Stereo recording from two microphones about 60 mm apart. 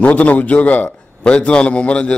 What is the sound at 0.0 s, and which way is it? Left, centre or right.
A man's voice, left.